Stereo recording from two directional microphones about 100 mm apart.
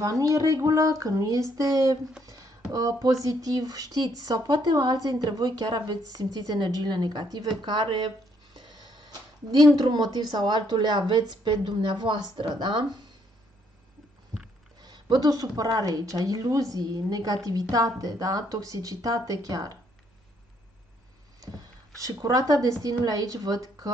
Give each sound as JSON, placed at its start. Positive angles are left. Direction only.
{"t": 0.0, "sound": "speech", "side_deg": -35}
{"t": 9.8, "sound": "a woman's voice", "side_deg": -45}
{"t": 14.8, "sound": "speech", "side_deg": -45}
{"t": 22.0, "sound": "speech", "side_deg": -35}